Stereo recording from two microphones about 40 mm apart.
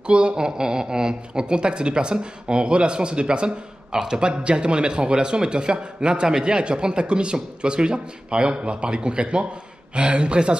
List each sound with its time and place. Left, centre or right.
0.0 s speech: right